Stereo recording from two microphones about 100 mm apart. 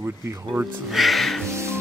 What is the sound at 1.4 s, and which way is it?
Music, 25° right (ahead or behind).